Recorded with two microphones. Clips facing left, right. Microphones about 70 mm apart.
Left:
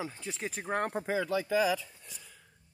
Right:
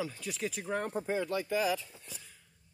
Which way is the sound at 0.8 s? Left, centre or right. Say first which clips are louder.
Left 2 dB; left.